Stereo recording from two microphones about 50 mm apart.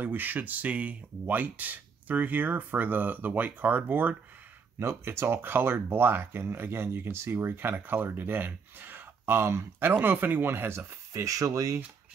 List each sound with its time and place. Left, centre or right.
0.0 s speech: right
4.7 s speech: right
9.8 s speech: right
11.1 s speech: right